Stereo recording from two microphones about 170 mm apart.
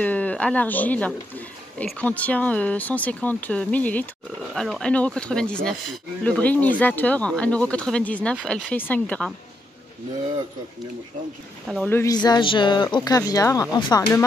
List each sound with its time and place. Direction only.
0.0 s speech: 10° left (ahead or behind)
11.8 s speech: 15° left (ahead or behind)